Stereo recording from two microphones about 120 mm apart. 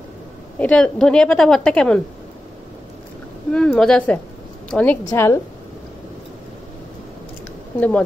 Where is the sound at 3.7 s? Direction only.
5° left (ahead or behind).